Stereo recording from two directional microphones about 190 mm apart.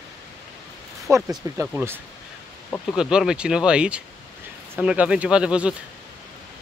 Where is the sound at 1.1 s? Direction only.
15° right (ahead or behind).